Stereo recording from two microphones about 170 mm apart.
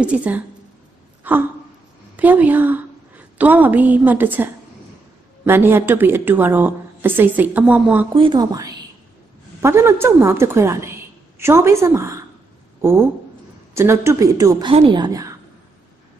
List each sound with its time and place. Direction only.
0.0 s a woman's voice: 5° right (ahead or behind)
1.3 s gasp: 10° right (ahead or behind)
2.1 s a woman's voice: 10° right (ahead or behind)
8.1 s a woman's voice: 30° right (ahead or behind)
14.7 s a woman's voice: 30° right (ahead or behind)